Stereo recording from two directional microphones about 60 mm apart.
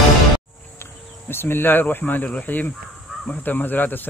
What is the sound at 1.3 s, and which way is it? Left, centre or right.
A man's voice, left.